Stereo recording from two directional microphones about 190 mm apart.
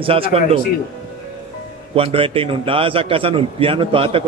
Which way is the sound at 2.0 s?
30° right (ahead or behind).